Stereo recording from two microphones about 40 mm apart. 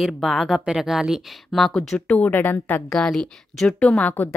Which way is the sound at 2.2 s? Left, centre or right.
Left.